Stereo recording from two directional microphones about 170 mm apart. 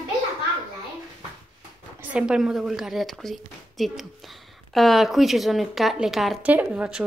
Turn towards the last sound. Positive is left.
turn(degrees=-5)  # may be behind; listen again after turning